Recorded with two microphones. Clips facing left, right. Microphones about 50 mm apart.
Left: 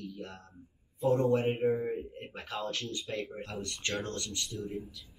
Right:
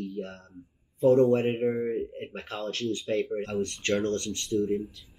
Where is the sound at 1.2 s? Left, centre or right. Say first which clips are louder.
Right 4 dB; right.